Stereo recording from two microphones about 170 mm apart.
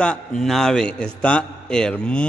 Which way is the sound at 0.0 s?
5° left (ahead or behind).